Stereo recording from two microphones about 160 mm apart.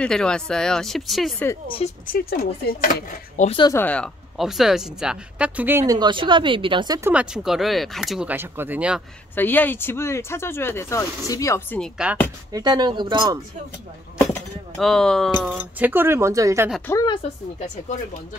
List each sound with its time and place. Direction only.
0.0 s speech: 5° left (ahead or behind)
2.1 s speech: 70° left (ahead or behind)
3.4 s speech: 30° left (ahead or behind)
3.7 s speech: 10° left (ahead or behind); by 5.9 s 15° right (ahead or behind)
5.9 s speech: 30° right (ahead or behind)
7.0 s speech: 10° right (ahead or behind)
9.3 s speech: 10° left (ahead or behind)
11.8 s speech: 5° right (ahead or behind)
12.5 s speech: 25° right (ahead or behind)
14.8 s speech: 5° left (ahead or behind)
15.4 s speech: 10° right (ahead or behind)
16.8 s speech: 20° left (ahead or behind)
17.6 s speech: 50° left (ahead or behind)